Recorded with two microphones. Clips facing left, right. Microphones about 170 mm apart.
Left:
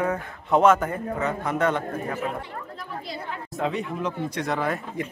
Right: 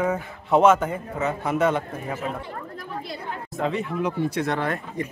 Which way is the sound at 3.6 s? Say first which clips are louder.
Right 2 dB; centre (ahead or behind).